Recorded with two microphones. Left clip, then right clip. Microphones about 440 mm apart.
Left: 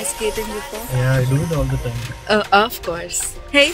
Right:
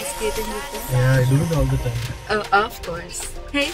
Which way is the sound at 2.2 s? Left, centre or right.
Left.